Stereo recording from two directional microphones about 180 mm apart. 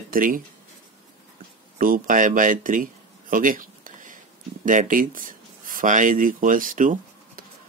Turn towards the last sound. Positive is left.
turn(degrees=-45)  # may be behind; listen again after turning